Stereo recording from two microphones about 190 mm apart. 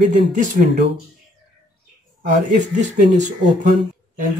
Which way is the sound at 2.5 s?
40° right (ahead or behind).